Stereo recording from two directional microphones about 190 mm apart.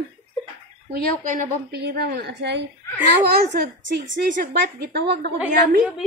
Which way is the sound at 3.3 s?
55° right (ahead or behind).